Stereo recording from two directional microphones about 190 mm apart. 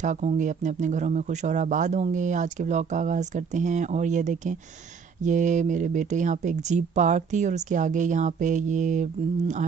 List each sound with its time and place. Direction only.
0.0 s speech: 40° right (ahead or behind)